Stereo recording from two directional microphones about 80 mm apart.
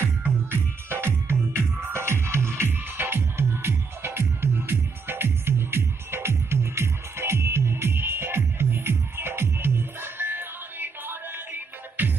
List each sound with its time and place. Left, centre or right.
0.0 s music: right